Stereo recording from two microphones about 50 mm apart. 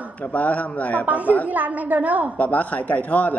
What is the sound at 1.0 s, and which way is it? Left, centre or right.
A woman's voice, right.